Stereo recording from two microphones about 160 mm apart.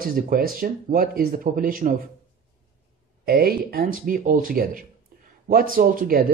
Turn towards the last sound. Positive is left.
turn(degrees=-65)  # may be behind; listen again after turning